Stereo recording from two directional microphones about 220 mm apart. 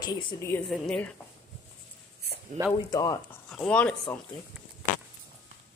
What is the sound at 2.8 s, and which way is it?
Speech, 15° left (ahead or behind).